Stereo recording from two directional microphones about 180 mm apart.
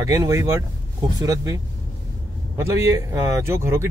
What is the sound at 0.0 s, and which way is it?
Speech, 20° right (ahead or behind).